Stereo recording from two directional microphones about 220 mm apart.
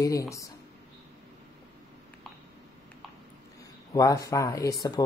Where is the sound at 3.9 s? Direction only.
15° left (ahead or behind).